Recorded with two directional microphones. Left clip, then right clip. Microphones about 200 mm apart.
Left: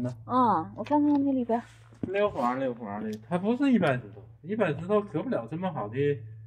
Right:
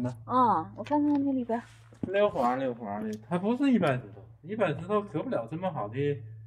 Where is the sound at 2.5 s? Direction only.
55° right (ahead or behind); by 4.0 s 40° right (ahead or behind).